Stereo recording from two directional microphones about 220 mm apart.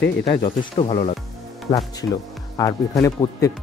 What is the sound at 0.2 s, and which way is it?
Speech, 25° left (ahead or behind).